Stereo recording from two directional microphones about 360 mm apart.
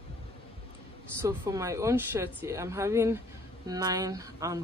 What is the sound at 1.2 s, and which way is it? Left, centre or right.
Speech, centre.